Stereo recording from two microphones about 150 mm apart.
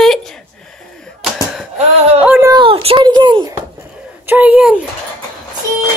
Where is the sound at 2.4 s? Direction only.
30° right (ahead or behind).